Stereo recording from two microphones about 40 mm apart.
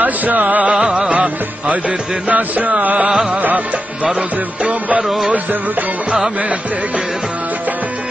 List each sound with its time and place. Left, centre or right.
0.0 s music: right
0.7 s music: right
4.6 s music: right
5.0 s music: centre